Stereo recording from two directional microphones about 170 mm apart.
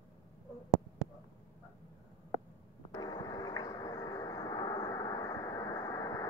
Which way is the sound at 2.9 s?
25° left (ahead or behind).